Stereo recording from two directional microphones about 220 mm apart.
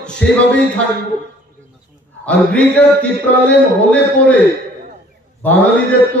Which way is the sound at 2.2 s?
5° left (ahead or behind).